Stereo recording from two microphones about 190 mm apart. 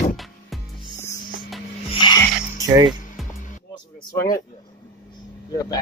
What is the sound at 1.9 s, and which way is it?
Music, 25° left (ahead or behind).